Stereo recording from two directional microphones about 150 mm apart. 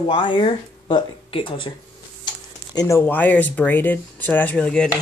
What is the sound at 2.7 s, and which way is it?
Speech, 25° left (ahead or behind).